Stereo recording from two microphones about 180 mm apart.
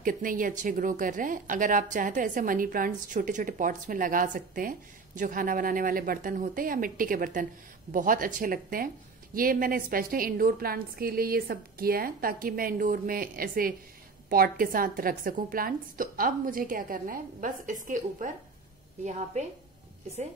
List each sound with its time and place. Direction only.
0.0 s a woman's voice: 50° right (ahead or behind)